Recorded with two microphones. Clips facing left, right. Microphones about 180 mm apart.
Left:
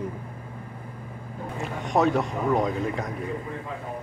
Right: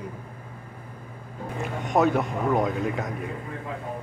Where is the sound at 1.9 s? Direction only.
Centre (ahead or behind).